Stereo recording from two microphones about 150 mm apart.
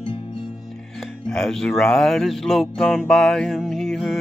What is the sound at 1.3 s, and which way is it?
Music, 5° left (ahead or behind).